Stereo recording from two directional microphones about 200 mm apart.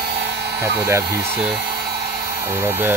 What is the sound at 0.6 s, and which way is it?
Speech, 15° right (ahead or behind).